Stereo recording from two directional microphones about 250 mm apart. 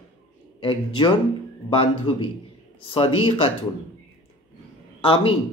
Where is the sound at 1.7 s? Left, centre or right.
Left.